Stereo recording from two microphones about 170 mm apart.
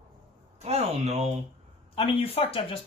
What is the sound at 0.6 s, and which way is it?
Speech, 40° right (ahead or behind).